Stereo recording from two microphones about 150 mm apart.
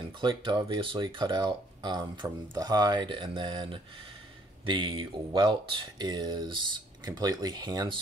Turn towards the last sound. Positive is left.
turn(degrees=-25)  # may be behind; listen again after turning